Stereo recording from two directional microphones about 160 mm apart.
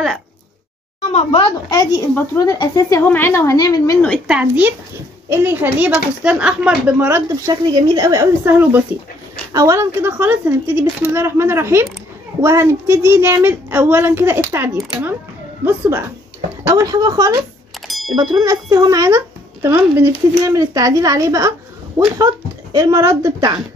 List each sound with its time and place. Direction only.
1.1 s speech: 30° left (ahead or behind)
3.0 s speech: 15° left (ahead or behind)
4.3 s speech: 10° right (ahead or behind)
17.8 s a sound: centre (ahead or behind)
18.1 s speech: 25° right (ahead or behind)